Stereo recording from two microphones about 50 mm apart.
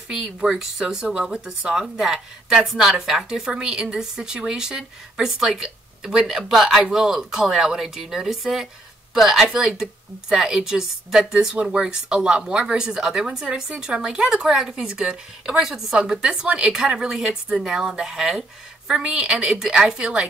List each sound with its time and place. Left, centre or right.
0.1 s speech: centre
16.0 s speech: centre